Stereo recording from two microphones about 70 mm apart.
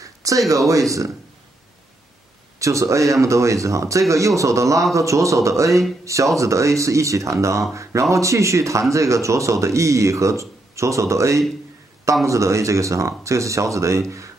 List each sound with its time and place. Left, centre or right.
0.0 s a sound: right
2.6 s speech: right
5.7 s speech: centre
6.0 s speech: right